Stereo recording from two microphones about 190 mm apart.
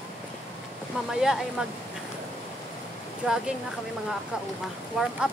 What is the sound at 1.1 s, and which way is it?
Speech, centre (ahead or behind).